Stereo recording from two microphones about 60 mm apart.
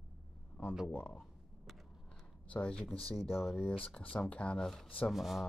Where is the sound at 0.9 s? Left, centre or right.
Left.